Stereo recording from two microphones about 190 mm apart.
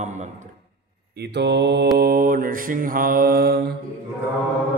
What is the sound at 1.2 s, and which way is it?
Mantra, 60° right (ahead or behind).